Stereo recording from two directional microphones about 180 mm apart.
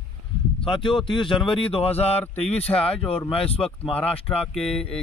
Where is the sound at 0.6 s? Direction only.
25° left (ahead or behind).